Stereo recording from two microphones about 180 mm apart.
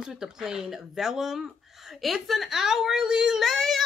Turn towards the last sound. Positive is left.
turn(degrees=0)  # may be behind; listen again after turning